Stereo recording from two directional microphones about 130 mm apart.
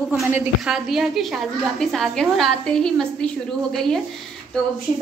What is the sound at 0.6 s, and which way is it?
A woman's voice, 5° right (ahead or behind).